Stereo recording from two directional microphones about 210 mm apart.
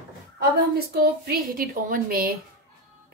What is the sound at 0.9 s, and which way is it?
A woman's voice, 45° right (ahead or behind).